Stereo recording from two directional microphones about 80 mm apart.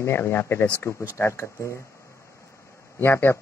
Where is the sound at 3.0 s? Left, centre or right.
Left.